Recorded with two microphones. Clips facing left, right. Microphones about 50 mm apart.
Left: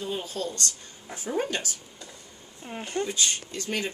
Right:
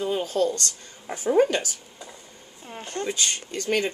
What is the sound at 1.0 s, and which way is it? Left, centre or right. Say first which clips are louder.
Speech: right 9 dB; right.